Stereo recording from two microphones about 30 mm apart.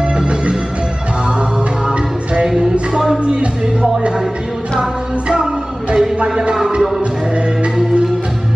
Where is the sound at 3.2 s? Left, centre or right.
Right.